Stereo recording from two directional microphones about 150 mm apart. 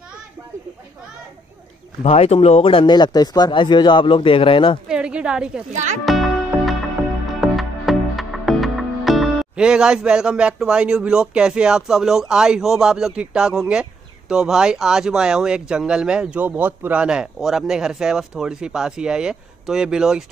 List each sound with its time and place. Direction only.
2.0 s speech: 45° left (ahead or behind)
4.8 s a sound: 5° right (ahead or behind)
5.7 s speech: 55° right (ahead or behind)
6.0 s music: centre (ahead or behind)
14.3 s speech: 5° right (ahead or behind)